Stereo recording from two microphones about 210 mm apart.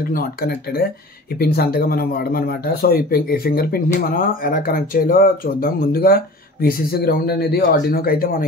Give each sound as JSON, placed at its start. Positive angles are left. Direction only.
{"t": 0.0, "sound": "speech", "side_deg": 45}